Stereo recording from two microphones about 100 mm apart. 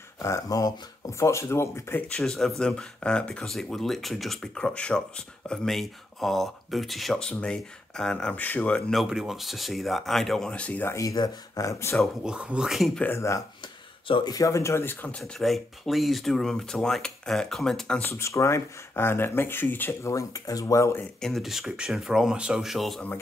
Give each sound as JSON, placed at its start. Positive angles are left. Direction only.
{"t": 0.2, "sound": "speech", "side_deg": 35}
{"t": 2.1, "sound": "speech", "side_deg": 5}
{"t": 8.9, "sound": "speech", "side_deg": -5}
{"t": 11.0, "sound": "speech", "side_deg": 35}
{"t": 12.0, "sound": "speech", "side_deg": -10}
{"t": 13.0, "sound": "speech", "side_deg": 30}
{"t": 14.0, "sound": "speech", "side_deg": 60}
{"t": 14.3, "sound": "speech", "side_deg": 30}
{"t": 18.0, "sound": "speech", "side_deg": 25}
{"t": 21.2, "sound": "speech", "side_deg": 0}